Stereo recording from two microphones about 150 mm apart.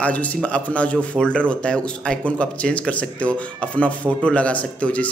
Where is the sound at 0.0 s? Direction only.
10° left (ahead or behind).